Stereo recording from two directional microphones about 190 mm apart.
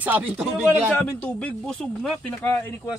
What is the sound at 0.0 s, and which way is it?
Speech, 10° right (ahead or behind).